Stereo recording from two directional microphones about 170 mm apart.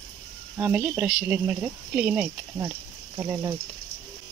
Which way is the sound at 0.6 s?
10° right (ahead or behind).